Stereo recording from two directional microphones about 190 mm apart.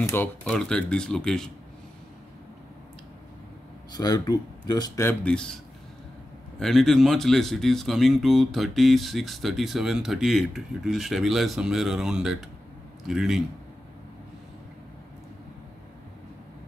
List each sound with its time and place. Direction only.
0.0 s speech: 10° left (ahead or behind)
3.9 s speech: 20° left (ahead or behind); by 5.6 s 5° left (ahead or behind)
6.6 s speech: centre (ahead or behind)